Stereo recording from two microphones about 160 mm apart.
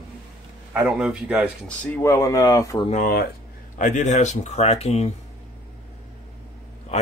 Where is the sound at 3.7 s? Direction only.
50° left (ahead or behind).